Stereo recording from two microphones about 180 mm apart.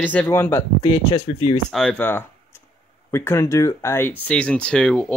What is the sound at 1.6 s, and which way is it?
Speech, 5° left (ahead or behind).